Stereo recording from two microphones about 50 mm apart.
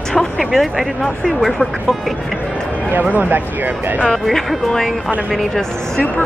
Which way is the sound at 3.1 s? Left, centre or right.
Right.